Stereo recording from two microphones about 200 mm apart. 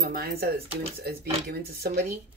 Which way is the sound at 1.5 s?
55° right (ahead or behind).